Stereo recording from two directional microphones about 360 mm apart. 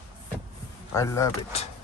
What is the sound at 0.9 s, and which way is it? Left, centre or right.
Speech, centre.